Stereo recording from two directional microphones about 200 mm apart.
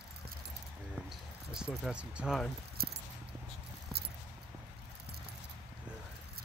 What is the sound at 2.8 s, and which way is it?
Keys jangling, 50° right (ahead or behind).